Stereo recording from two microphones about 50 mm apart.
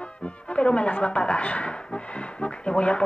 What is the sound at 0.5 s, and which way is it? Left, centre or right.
Speech, left.